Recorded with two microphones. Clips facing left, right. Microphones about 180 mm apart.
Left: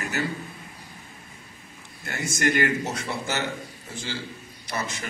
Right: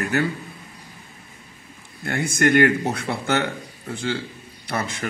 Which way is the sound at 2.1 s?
55° right (ahead or behind).